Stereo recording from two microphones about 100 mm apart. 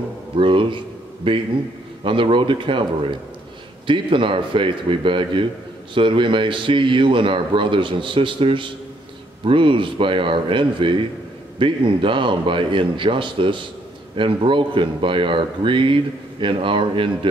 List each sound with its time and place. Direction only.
0.4 s a man's voice: 60° right (ahead or behind)